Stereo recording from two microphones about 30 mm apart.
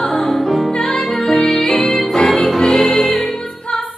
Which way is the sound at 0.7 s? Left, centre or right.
Left.